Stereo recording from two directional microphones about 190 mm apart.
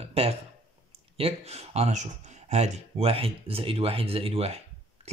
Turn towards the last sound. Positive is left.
turn(degrees=-30)  # may be behind; listen again after turning